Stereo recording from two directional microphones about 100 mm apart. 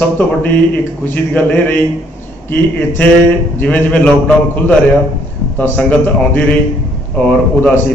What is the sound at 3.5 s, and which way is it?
Speech, 15° left (ahead or behind).